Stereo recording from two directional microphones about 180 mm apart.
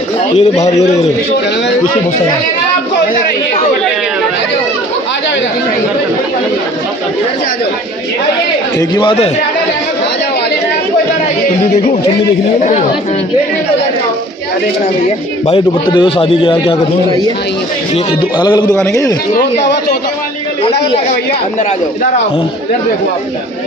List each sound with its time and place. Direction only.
0.4 s a man's voice: 40° left (ahead or behind)
8.7 s a man's voice: 25° left (ahead or behind)
12.5 s a man's voice: 40° left (ahead or behind)
15.4 s a man's voice: 25° left (ahead or behind)
18.4 s a man's voice: 20° left (ahead or behind)
19.3 s speech: 70° left (ahead or behind)